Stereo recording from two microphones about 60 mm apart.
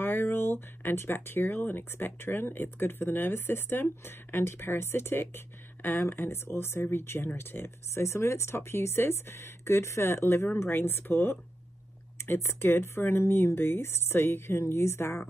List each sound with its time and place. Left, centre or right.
0.0 s speech: left